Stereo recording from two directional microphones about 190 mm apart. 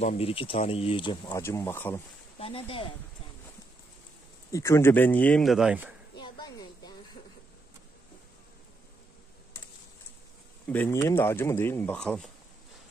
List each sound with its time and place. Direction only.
0.0 s speech: 35° left (ahead or behind)
1.4 s speech: 15° left (ahead or behind)
2.3 s speech: 30° left (ahead or behind)
4.5 s speech: 15° left (ahead or behind); by 5.9 s 5° right (ahead or behind)
6.1 s a sound: 20° left (ahead or behind)
10.7 s speech: 10° left (ahead or behind)